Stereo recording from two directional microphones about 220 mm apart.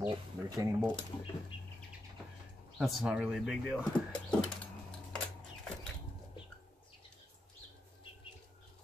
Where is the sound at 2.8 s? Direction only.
Centre (ahead or behind).